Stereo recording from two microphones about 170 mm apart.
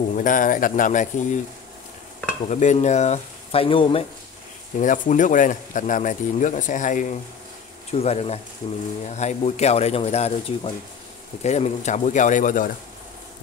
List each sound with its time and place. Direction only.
0.1 s a man's voice: 50° left (ahead or behind)
2.4 s speech: 45° left (ahead or behind)
4.7 s a man's voice: 50° left (ahead or behind)